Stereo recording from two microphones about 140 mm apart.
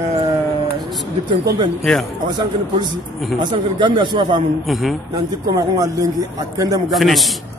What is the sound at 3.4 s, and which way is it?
A man's voice, 35° right (ahead or behind).